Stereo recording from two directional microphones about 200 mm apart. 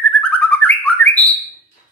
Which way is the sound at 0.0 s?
5° left (ahead or behind).